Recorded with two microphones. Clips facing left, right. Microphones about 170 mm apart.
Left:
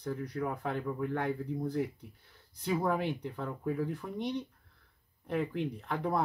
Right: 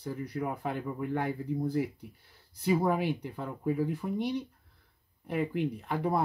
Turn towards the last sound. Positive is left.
turn(degrees=-10)  # may be behind; listen again after turning